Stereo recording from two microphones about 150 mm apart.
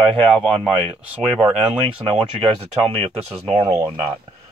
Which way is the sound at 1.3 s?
5° right (ahead or behind).